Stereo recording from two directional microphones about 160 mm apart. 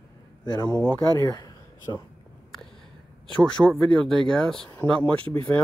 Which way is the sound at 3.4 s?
5° left (ahead or behind).